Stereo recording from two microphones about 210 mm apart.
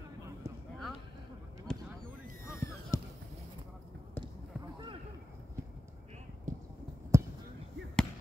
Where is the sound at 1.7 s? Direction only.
5° left (ahead or behind).